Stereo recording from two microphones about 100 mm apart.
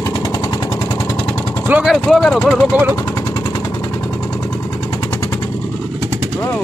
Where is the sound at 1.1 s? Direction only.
20° left (ahead or behind).